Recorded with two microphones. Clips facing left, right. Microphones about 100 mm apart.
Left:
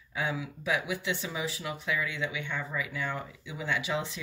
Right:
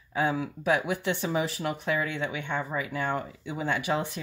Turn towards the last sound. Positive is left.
turn(degrees=-50)  # may be behind; listen again after turning